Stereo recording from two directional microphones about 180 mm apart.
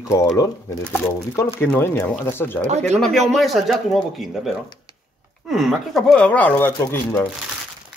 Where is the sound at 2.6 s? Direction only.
40° right (ahead or behind).